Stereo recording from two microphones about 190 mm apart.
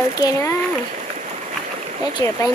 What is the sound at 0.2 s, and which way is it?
Speech, 15° left (ahead or behind).